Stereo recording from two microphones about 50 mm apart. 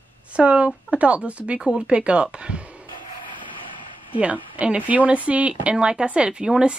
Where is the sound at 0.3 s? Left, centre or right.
Right.